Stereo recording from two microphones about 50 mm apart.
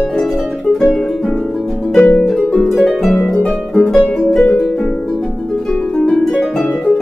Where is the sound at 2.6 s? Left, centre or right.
Centre.